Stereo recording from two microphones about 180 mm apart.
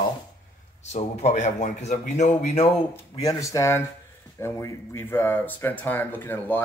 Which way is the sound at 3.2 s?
20° left (ahead or behind).